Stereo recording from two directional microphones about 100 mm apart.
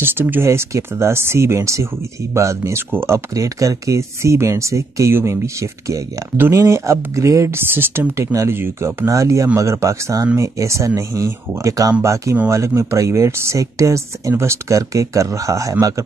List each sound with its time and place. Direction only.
0.0 s speech: 20° right (ahead or behind)